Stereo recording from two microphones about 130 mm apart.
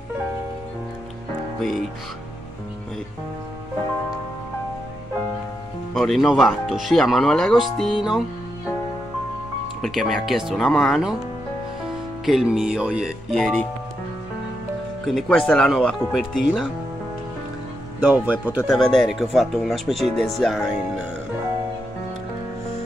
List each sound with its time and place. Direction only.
5.9 s speech: centre (ahead or behind)
9.8 s speech: centre (ahead or behind)
12.3 s speech: 5° right (ahead or behind)
13.3 s speech: 5° left (ahead or behind)
15.0 s speech: 5° left (ahead or behind)
18.0 s speech: 10° right (ahead or behind)
18.7 s speech: 5° left (ahead or behind)